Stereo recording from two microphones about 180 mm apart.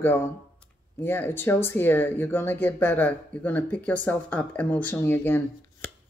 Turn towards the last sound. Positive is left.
turn(degrees=10)  # may be behind; listen again after turning